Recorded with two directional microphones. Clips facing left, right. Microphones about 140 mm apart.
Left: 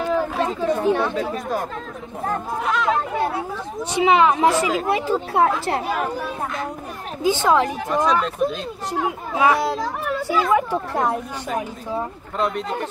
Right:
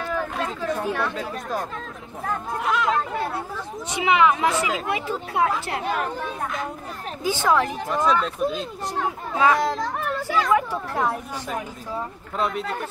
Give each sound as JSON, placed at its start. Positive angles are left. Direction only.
{"t": 0.0, "sound": "chatter", "side_deg": 20}
{"t": 0.8, "sound": "speech", "side_deg": 30}
{"t": 1.3, "sound": "speech", "side_deg": 0}
{"t": 3.9, "sound": "speech", "side_deg": 35}
{"t": 5.9, "sound": "speech", "side_deg": 5}
{"t": 7.2, "sound": "speech", "side_deg": 20}
{"t": 7.9, "sound": "speech", "side_deg": 0}
{"t": 8.9, "sound": "speech", "side_deg": 10}
{"t": 10.2, "sound": "speech", "side_deg": 20}
{"t": 12.4, "sound": "speech", "side_deg": 0}